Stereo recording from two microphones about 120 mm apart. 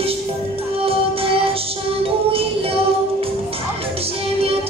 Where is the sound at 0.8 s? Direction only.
50° right (ahead or behind).